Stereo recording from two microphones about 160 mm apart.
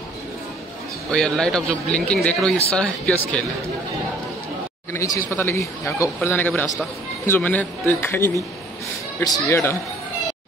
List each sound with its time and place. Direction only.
1.1 s a man's voice: 5° left (ahead or behind)
4.9 s speech: 20° left (ahead or behind)